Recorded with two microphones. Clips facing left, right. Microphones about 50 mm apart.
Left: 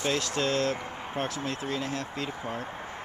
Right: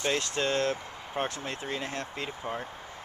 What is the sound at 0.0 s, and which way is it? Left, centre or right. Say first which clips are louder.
Speech: left 1 dB; centre.